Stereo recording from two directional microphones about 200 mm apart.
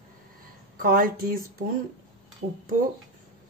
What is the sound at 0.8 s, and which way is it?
Speech, 45° right (ahead or behind).